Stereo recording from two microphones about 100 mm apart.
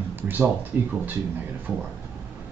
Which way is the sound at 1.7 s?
15° right (ahead or behind).